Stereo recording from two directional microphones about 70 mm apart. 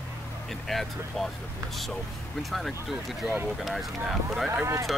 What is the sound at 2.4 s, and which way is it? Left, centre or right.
Speech, centre.